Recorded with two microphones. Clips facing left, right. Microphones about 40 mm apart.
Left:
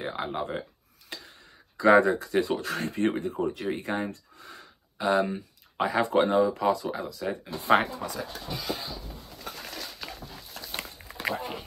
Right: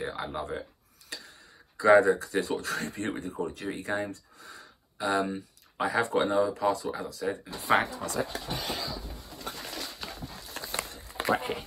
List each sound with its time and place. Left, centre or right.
0.0 s speech: left
1.8 s speech: left
5.2 s a sound: centre
5.9 s speech: left
8.3 s speech: right
10.6 s run: right
11.3 s speech: right